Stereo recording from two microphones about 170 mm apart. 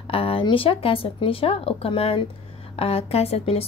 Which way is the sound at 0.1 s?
35° left (ahead or behind).